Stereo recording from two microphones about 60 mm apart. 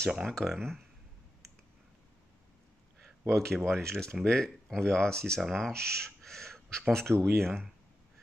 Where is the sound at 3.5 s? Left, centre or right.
Centre.